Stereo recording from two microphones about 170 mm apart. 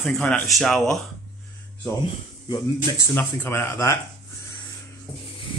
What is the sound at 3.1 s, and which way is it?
Speech, 15° left (ahead or behind).